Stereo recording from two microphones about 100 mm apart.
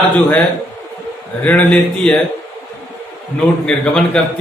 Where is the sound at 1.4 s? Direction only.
15° left (ahead or behind).